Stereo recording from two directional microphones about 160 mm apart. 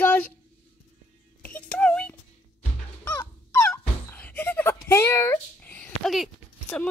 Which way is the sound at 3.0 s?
15° left (ahead or behind).